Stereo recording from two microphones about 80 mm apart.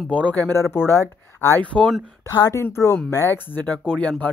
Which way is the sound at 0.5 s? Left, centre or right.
Left.